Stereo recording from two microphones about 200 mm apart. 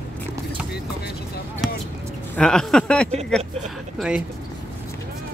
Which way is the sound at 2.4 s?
5° left (ahead or behind).